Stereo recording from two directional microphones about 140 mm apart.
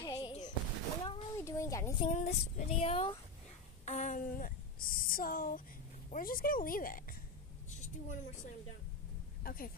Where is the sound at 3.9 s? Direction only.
60° left (ahead or behind); by 7.1 s 90° left.